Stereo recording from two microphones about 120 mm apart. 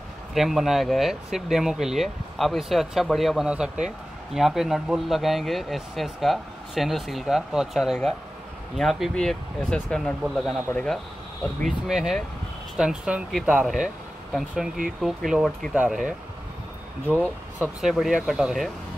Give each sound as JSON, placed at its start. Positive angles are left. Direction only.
{"t": 0.3, "sound": "speech", "side_deg": 0}
{"t": 17.6, "sound": "speech", "side_deg": 0}